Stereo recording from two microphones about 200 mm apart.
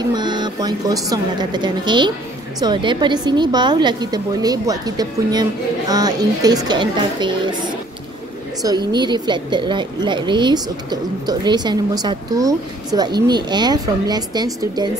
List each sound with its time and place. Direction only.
0.1 s a woman's voice: 20° right (ahead or behind)
8.6 s a woman's voice: 20° right (ahead or behind)